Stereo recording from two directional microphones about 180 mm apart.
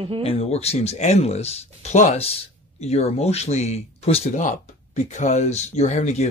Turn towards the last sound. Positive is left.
turn(degrees=40)  # may be behind; listen again after turning